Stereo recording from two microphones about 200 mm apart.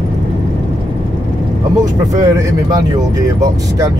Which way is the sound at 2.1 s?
15° right (ahead or behind).